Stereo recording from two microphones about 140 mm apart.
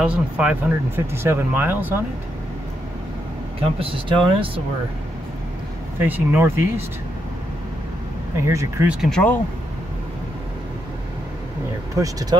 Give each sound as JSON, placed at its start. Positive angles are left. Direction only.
{"t": 0.0, "sound": "speech", "side_deg": -10}
{"t": 3.8, "sound": "speech", "side_deg": -40}
{"t": 5.9, "sound": "speech", "side_deg": -15}
{"t": 8.5, "sound": "speech", "side_deg": -20}
{"t": 9.0, "sound": "speech", "side_deg": 5}
{"t": 11.9, "sound": "speech", "side_deg": -25}